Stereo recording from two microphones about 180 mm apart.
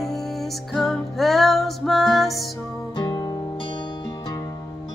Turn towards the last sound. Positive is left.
turn(degrees=25)  # may be behind; listen again after turning